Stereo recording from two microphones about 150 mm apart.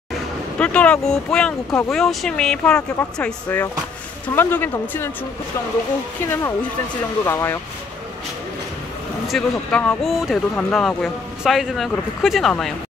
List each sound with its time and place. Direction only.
0.1 s speech: 10° left (ahead or behind)
6.2 s speech: 20° left (ahead or behind)
9.3 s speech: 5° left (ahead or behind)